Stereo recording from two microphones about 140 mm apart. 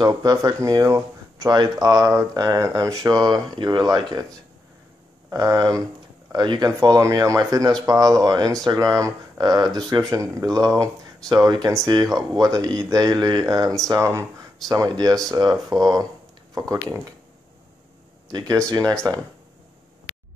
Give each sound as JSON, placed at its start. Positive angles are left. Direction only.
{"t": 0.0, "sound": "speech", "side_deg": -25}
{"t": 5.3, "sound": "speech", "side_deg": -25}
{"t": 6.8, "sound": "speech", "side_deg": -20}
{"t": 18.3, "sound": "speech", "side_deg": -25}